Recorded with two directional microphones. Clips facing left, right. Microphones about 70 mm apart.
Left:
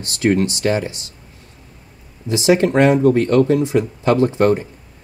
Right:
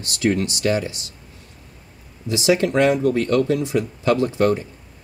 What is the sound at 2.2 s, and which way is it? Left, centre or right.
Speech, left.